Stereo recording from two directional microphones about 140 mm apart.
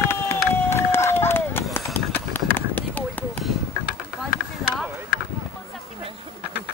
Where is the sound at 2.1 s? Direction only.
15° left (ahead or behind).